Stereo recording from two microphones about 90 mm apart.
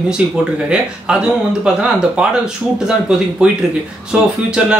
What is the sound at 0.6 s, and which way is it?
Speech, 10° right (ahead or behind).